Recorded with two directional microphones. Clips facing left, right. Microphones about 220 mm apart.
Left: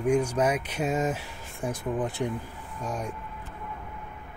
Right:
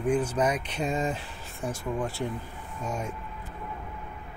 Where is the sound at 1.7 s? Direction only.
20° left (ahead or behind).